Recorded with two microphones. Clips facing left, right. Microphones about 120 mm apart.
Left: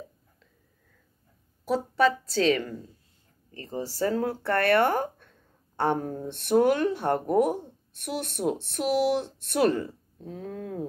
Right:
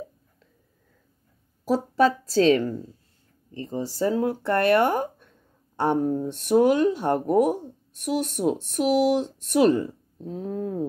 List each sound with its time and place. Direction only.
1.6 s a woman's voice: 35° right (ahead or behind)
3.5 s speech: 15° right (ahead or behind)